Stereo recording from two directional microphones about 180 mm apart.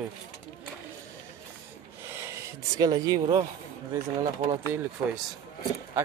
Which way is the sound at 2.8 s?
20° right (ahead or behind).